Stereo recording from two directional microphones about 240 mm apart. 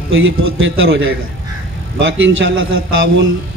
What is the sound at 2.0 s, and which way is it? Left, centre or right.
A man's voice, right.